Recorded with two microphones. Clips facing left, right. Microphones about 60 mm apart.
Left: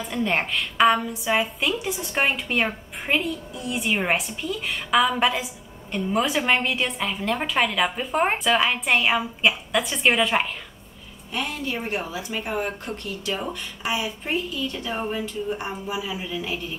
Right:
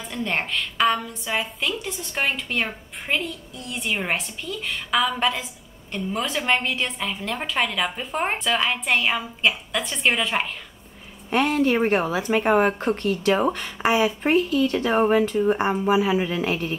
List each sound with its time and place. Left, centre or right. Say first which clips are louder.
0.1 s a woman's voice: left 1 dB; centre
11.2 s speech: right 9 dB; right